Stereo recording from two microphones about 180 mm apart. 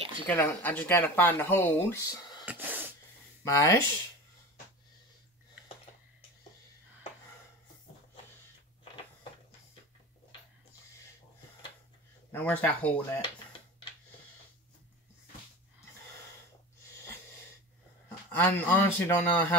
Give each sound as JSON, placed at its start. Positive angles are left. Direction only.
{"t": 0.3, "sound": "speech", "side_deg": 10}
{"t": 2.4, "sound": "a sound", "side_deg": -10}
{"t": 3.4, "sound": "speech", "side_deg": 15}
{"t": 12.3, "sound": "speech", "side_deg": 10}
{"t": 18.4, "sound": "speech", "side_deg": 10}